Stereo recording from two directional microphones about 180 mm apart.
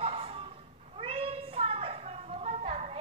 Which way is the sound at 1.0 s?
30° right (ahead or behind).